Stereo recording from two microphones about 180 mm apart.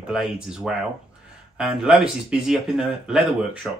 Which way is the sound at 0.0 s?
Centre (ahead or behind).